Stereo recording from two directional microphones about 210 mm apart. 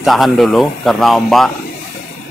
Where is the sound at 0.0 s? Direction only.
Centre (ahead or behind).